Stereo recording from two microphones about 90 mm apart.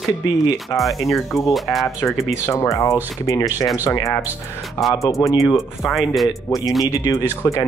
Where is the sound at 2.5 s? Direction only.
35° left (ahead or behind).